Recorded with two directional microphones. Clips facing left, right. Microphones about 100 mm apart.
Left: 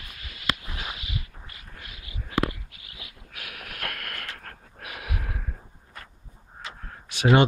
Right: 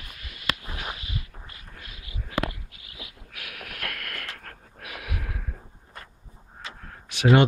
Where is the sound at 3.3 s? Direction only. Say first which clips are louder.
Left 1 dB; 30° left (ahead or behind).